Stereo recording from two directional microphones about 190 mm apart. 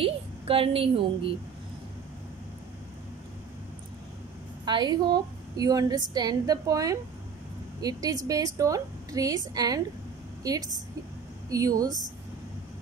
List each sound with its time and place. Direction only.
0.0 s a woman's voice: 30° right (ahead or behind)
4.6 s a woman's voice: 25° right (ahead or behind)